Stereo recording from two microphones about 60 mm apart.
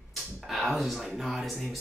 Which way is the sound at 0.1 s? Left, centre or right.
Centre.